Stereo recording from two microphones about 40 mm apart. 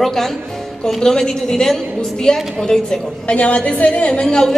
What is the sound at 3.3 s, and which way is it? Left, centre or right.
Speech, left.